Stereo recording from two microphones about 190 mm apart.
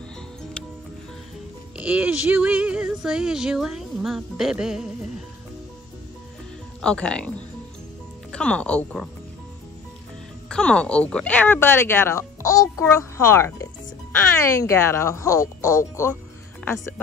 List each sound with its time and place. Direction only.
1.8 s speech: 5° right (ahead or behind)
6.8 s speech: 5° left (ahead or behind)
10.5 s speech: 5° left (ahead or behind)